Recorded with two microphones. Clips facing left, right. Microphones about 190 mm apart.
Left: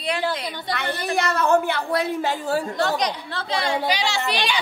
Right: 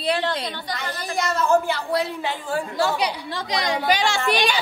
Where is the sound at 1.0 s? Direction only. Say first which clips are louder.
Left 1 dB; 65° left (ahead or behind); by 3.0 s 40° left (ahead or behind).